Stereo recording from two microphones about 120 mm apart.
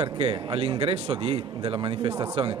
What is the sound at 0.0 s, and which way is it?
Speech, 50° right (ahead or behind).